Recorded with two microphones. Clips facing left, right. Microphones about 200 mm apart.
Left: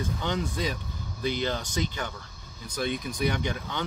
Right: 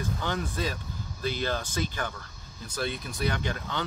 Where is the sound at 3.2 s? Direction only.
15° left (ahead or behind).